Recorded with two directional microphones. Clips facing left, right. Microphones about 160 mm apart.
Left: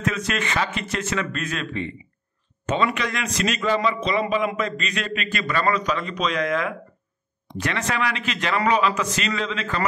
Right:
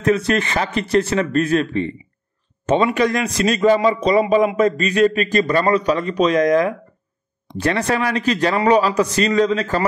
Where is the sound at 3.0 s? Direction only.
35° right (ahead or behind).